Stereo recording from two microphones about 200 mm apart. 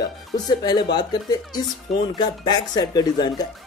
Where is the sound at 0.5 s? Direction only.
20° left (ahead or behind).